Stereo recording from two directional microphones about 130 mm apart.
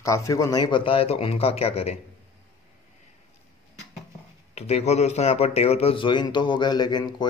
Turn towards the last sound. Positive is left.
turn(degrees=35)  # may be behind; listen again after turning